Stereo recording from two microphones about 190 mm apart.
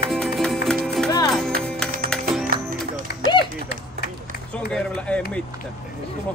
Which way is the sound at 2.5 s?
50° right (ahead or behind).